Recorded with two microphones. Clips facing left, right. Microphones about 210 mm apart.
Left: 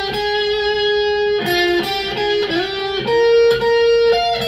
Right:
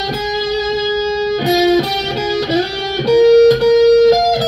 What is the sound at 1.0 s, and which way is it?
Music, 45° right (ahead or behind).